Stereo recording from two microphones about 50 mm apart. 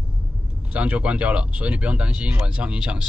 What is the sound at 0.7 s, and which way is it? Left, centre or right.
Speech, right.